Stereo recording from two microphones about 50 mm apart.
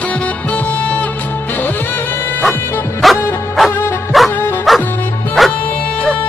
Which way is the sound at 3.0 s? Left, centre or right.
Centre.